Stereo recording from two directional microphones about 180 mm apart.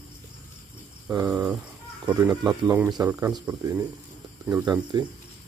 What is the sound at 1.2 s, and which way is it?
Speech, 10° right (ahead or behind).